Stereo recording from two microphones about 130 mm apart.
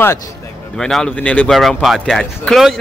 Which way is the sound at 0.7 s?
5° left (ahead or behind).